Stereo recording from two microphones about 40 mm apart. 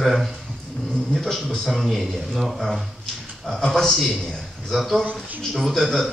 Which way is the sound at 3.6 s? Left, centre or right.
Centre.